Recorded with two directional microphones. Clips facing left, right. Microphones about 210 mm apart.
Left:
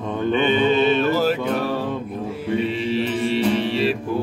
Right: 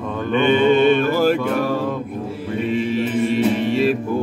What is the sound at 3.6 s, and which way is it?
Music, 50° right (ahead or behind).